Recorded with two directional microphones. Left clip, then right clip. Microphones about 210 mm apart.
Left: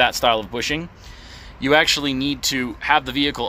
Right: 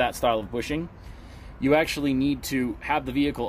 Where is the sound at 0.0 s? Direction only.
20° left (ahead or behind).